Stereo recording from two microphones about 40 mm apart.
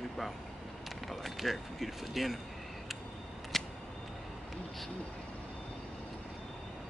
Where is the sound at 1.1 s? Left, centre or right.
Centre.